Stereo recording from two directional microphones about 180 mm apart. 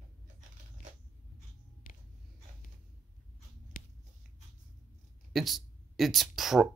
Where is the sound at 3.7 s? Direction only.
50° left (ahead or behind).